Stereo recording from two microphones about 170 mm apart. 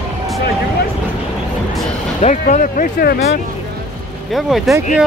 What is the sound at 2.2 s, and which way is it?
Speech, 45° left (ahead or behind).